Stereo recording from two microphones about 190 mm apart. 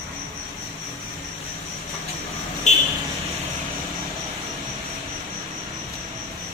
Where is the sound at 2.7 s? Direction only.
40° left (ahead or behind).